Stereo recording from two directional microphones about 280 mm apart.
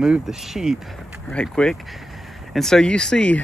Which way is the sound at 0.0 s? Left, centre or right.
Centre.